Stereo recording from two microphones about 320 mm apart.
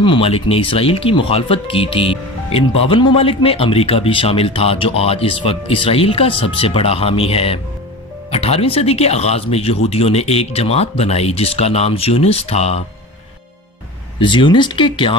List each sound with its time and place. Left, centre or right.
0.0 s a man's voice: centre
14.2 s a man's voice: centre